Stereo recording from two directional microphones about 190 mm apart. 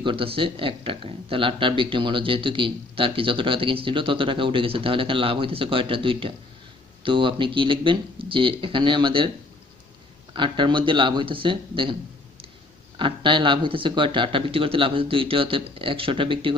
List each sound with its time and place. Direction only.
0.0 s speech: 30° right (ahead or behind)
10.3 s speech: 25° right (ahead or behind)